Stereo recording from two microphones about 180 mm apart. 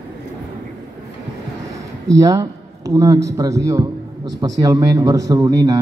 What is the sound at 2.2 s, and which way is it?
Speech, 20° right (ahead or behind).